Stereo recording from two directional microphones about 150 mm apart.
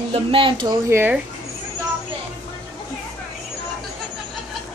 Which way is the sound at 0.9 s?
15° right (ahead or behind).